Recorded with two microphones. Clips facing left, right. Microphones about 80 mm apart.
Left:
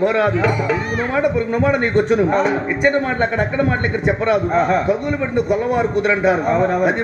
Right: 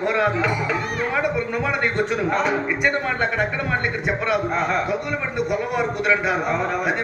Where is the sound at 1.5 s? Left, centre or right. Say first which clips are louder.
Left 6 dB; left.